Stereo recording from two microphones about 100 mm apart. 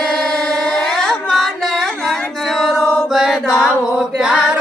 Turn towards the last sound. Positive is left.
turn(degrees=-5)  # may be behind; listen again after turning